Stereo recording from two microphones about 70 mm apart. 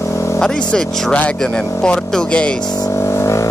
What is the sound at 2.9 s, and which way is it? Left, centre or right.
Music, left.